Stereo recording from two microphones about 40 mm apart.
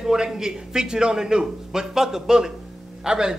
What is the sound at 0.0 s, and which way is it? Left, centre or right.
A man's voice, centre.